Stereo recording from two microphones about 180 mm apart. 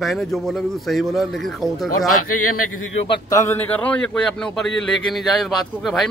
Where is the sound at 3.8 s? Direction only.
5° left (ahead or behind).